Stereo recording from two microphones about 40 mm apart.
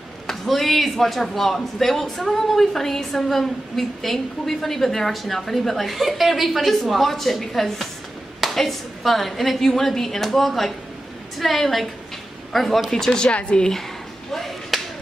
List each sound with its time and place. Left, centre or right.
0.3 s a man's voice: centre
13.1 s a woman's voice: left
13.6 s speech: centre
14.3 s a sound: centre